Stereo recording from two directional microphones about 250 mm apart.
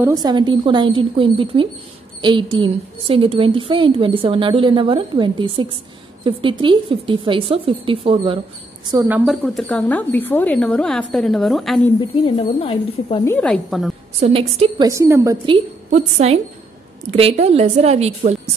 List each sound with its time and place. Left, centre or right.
0.0 s a woman's voice: centre
8.9 s a woman's voice: centre
12.0 s speech: left
13.2 s a woman's voice: centre
14.2 s a woman's voice: right